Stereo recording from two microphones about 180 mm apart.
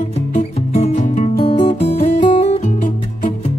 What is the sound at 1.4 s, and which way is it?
Guitar, 30° left (ahead or behind).